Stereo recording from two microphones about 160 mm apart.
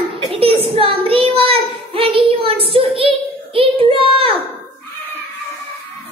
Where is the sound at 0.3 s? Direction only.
30° right (ahead or behind).